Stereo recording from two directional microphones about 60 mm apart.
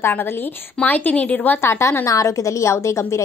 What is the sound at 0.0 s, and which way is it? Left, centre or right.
Speech, left.